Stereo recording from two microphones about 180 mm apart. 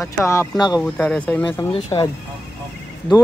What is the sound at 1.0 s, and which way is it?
Speech, 5° left (ahead or behind).